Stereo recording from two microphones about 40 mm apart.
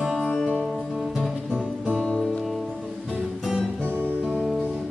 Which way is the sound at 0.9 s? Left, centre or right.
Centre.